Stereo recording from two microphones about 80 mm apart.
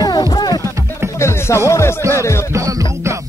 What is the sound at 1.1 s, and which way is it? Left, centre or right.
Music, left.